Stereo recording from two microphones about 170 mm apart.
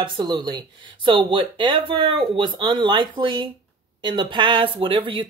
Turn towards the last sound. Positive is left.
turn(degrees=-30)  # may be behind; listen again after turning